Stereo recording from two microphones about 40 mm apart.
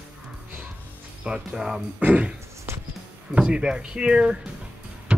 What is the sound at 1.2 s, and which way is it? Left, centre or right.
Speech, right.